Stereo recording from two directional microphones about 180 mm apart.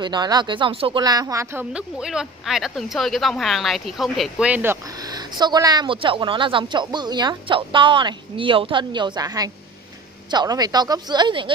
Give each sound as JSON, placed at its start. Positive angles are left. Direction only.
{"t": 0.0, "sound": "speech", "side_deg": -25}
{"t": 5.0, "sound": "speech", "side_deg": -25}